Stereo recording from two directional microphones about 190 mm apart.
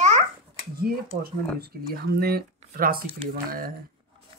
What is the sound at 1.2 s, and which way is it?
Speech, 50° right (ahead or behind).